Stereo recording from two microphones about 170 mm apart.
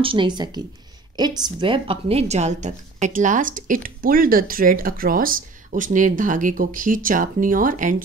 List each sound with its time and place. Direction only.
0.0 s a woman's voice: 30° right (ahead or behind); by 7.9 s 50° right (ahead or behind)